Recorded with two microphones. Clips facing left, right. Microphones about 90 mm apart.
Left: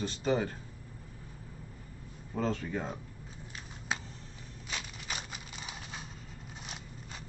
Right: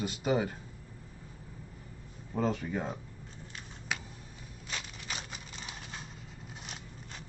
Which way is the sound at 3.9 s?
30° left (ahead or behind).